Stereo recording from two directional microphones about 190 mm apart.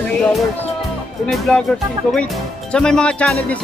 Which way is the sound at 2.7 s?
5° left (ahead or behind).